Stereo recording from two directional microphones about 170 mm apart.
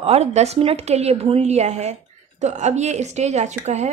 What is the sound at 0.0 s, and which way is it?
A woman's voice, 35° right (ahead or behind).